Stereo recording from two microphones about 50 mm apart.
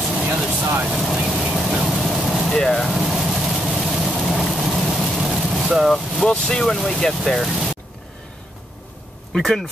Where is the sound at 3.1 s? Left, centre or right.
Centre.